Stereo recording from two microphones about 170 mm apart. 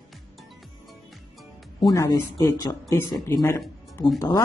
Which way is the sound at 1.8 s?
20° left (ahead or behind).